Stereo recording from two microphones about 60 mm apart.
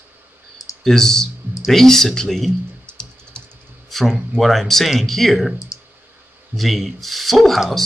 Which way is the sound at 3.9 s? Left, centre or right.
Centre.